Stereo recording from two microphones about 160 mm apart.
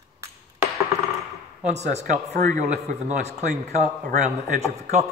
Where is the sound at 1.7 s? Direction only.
45° right (ahead or behind).